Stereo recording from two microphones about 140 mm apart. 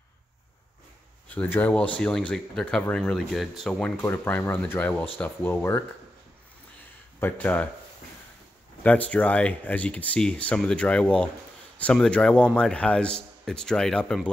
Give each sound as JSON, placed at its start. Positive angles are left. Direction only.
{"t": 1.3, "sound": "a man's voice", "side_deg": 10}
{"t": 4.0, "sound": "a man's voice", "side_deg": 15}
{"t": 7.2, "sound": "a man's voice", "side_deg": 15}
{"t": 8.8, "sound": "a man's voice", "side_deg": 10}